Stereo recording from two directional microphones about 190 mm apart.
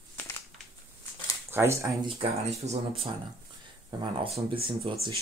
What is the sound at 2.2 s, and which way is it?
Speech, 35° right (ahead or behind).